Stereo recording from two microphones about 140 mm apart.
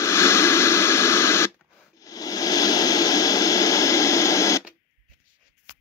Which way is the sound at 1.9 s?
25° left (ahead or behind).